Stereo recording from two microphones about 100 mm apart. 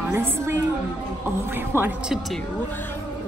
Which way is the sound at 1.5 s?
20° right (ahead or behind).